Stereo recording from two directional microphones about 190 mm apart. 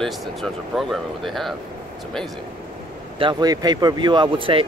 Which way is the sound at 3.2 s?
20° right (ahead or behind).